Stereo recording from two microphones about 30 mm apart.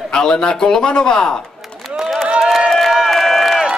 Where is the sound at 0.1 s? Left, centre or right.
Left.